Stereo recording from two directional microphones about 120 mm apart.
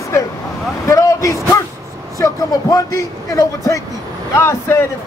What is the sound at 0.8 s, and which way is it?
Vehicle, 25° left (ahead or behind).